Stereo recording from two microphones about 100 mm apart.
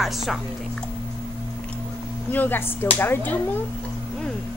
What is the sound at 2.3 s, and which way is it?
Speech, 20° left (ahead or behind).